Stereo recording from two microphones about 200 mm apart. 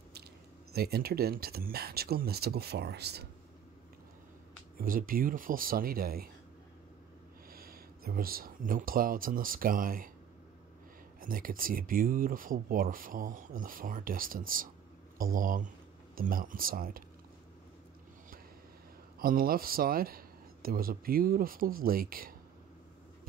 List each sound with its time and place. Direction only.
0.7 s speech: 50° right (ahead or behind)
4.7 s speech: 45° right (ahead or behind)
7.5 s speech: 45° right (ahead or behind)
11.1 s speech: 45° right (ahead or behind)
19.1 s speech: 45° right (ahead or behind)